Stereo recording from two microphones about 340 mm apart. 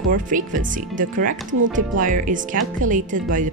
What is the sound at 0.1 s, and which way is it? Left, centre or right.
Speech, right.